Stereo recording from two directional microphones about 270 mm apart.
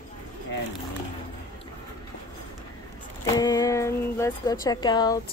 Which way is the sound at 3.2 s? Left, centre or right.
Centre.